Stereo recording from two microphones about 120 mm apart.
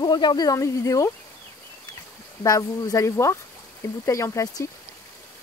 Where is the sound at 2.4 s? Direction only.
30° left (ahead or behind).